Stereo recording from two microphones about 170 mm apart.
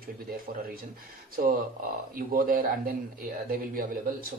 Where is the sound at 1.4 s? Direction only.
55° right (ahead or behind).